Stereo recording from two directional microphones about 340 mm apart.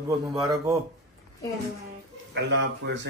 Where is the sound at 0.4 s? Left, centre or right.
Centre.